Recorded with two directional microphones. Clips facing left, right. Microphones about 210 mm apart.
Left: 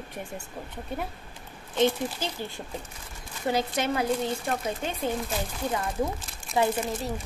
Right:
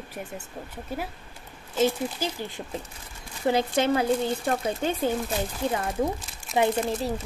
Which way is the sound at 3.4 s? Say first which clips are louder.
Right 4 dB; 30° right (ahead or behind).